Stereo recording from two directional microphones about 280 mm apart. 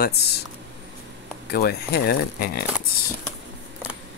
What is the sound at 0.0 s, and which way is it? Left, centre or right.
Speech, left.